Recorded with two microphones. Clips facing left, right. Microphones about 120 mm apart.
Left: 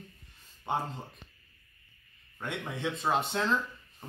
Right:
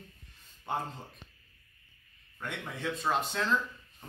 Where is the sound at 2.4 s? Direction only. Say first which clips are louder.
Left 3 dB; 25° left (ahead or behind).